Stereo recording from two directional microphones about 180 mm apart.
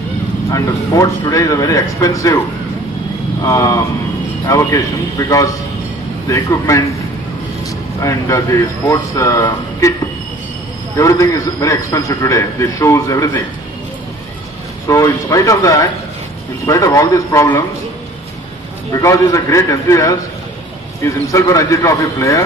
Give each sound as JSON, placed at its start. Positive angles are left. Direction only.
{"t": 0.5, "sound": "a man's voice", "side_deg": 15}
{"t": 3.4, "sound": "a man's voice", "side_deg": 20}
{"t": 6.2, "sound": "a man's voice", "side_deg": 15}
{"t": 8.0, "sound": "a man's voice", "side_deg": 15}
{"t": 11.0, "sound": "a man's voice", "side_deg": 20}
{"t": 14.9, "sound": "a man's voice", "side_deg": 20}
{"t": 18.9, "sound": "a man's voice", "side_deg": 15}